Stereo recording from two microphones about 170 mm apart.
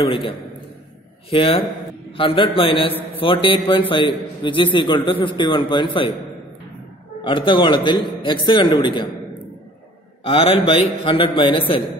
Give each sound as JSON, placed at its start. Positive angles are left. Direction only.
{"t": 0.0, "sound": "a man's voice", "side_deg": 30}
{"t": 7.2, "sound": "a man's voice", "side_deg": 30}
{"t": 10.2, "sound": "a man's voice", "side_deg": 35}